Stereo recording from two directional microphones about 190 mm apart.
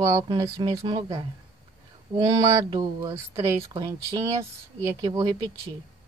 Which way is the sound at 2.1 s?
30° right (ahead or behind).